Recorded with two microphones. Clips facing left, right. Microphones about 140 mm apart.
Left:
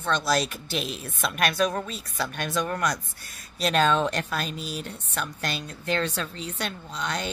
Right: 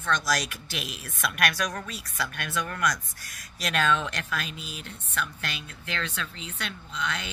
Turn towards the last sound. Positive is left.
turn(degrees=35)  # may be behind; listen again after turning